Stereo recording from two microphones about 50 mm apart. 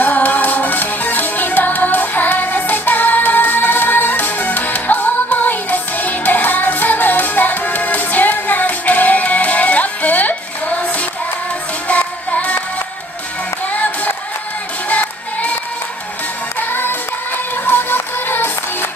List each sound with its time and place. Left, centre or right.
0.0 s music: left
13.7 s music: left
16.5 s music: left